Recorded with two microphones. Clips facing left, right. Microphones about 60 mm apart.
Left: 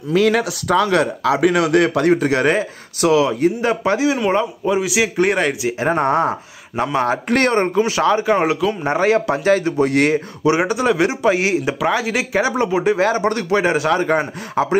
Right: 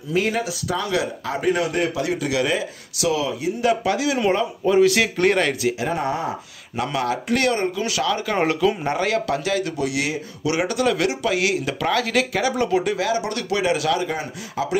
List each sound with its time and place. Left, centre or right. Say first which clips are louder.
0.1 s speech: left 6 dB; left
2.0 s speech: left 7 dB; left
3.6 s speech: left 3 dB; left
4.7 s speech: right 1 dB; centre
5.8 s speech: left 7 dB; left
6.8 s a man's voice: left 5 dB; left
7.2 s a man's voice: left 3 dB; left
8.4 s speech: left 2 dB; centre
8.8 s a man's voice: left 6 dB; left
10.4 s speech: left 3 dB; left
11.8 s speech: left 2 dB; centre
13.0 s a man's voice: left 6 dB; left
14.0 s speech: left 8 dB; left